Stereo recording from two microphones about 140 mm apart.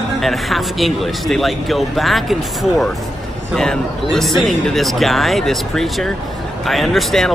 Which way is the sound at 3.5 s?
5° left (ahead or behind).